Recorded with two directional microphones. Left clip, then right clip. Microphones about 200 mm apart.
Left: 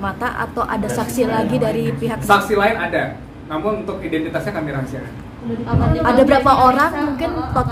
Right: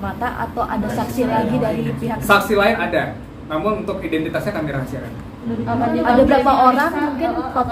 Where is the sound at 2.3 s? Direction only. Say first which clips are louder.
Even; 5° right (ahead or behind).